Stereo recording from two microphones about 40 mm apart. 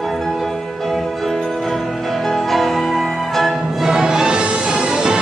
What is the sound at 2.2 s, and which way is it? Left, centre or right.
Music, centre.